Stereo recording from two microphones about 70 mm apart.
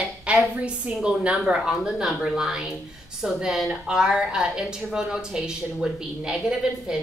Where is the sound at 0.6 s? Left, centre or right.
Centre.